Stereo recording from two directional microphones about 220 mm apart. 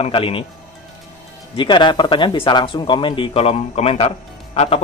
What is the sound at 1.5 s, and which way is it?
Speech, 20° left (ahead or behind).